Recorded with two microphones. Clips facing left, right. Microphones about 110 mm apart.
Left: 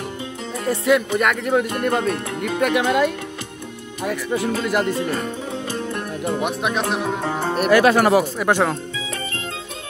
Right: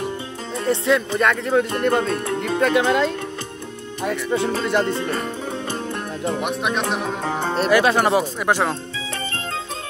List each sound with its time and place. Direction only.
0.7 s speech: 30° right (ahead or behind)
5.5 s music: 30° right (ahead or behind)
6.4 s speech: centre (ahead or behind)
7.7 s speech: 25° right (ahead or behind)